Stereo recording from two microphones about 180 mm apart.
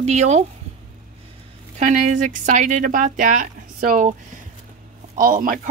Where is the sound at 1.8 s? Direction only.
45° right (ahead or behind).